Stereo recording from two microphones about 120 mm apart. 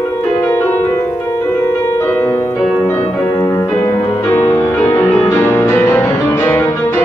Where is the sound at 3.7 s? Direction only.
15° left (ahead or behind).